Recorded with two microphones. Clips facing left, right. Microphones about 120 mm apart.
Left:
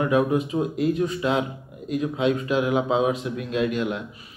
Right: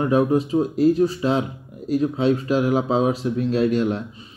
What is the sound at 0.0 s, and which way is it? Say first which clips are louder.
A man's voice: right 3 dB; 30° right (ahead or behind).